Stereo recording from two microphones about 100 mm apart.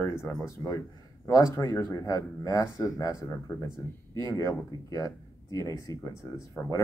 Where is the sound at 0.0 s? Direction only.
25° left (ahead or behind).